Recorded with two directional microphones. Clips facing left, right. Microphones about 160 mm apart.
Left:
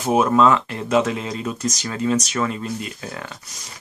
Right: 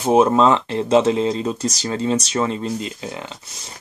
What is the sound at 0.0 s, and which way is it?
Speech, 25° right (ahead or behind).